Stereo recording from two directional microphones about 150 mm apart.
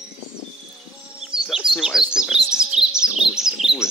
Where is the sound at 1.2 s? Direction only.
5° right (ahead or behind).